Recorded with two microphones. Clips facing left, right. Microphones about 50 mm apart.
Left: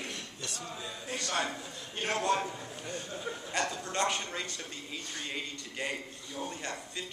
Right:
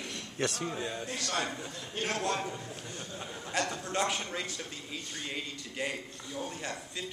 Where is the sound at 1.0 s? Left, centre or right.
Centre.